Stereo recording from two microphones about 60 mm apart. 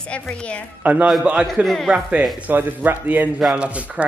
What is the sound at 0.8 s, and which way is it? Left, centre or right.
A woman's voice, right.